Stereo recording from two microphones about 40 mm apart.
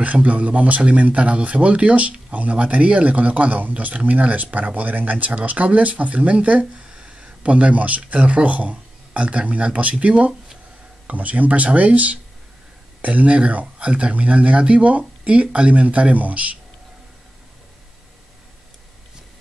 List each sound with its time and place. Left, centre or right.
0.0 s speech: right
6.7 s speech: right